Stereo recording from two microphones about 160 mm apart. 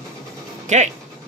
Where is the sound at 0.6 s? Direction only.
45° right (ahead or behind).